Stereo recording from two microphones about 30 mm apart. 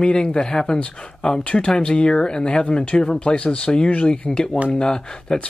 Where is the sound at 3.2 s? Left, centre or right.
Left.